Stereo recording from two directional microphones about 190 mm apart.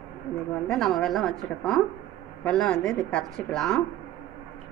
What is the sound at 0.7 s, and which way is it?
Speech, centre (ahead or behind).